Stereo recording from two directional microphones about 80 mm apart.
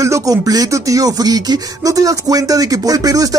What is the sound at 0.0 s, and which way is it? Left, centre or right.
Speech, right.